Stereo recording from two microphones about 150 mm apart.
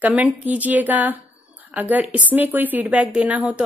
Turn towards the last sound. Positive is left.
turn(degrees=-10)  # may be behind; listen again after turning